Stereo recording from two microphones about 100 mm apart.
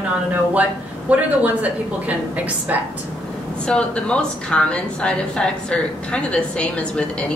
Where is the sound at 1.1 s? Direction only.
15° right (ahead or behind).